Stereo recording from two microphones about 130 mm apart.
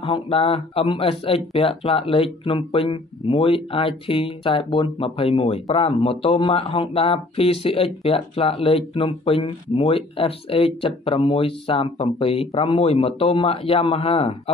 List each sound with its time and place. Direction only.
0.0 s speech: 40° left (ahead or behind)